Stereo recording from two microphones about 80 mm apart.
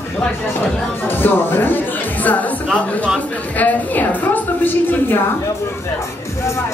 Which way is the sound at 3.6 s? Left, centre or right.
Left.